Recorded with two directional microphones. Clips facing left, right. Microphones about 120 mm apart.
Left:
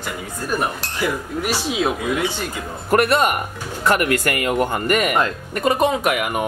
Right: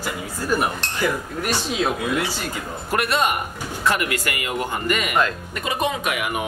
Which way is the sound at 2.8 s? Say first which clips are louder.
Left 5 dB; 50° left (ahead or behind).